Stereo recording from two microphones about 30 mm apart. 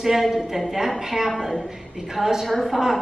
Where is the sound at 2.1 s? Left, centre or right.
Centre.